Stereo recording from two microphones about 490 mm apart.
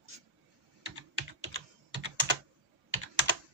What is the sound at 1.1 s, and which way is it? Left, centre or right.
Computer keyboard, right.